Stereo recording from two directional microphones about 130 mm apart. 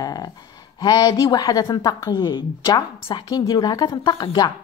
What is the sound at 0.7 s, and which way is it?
A woman's voice, 30° left (ahead or behind).